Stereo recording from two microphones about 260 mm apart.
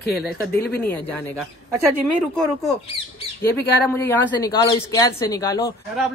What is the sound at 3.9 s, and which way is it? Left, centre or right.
Speech, centre.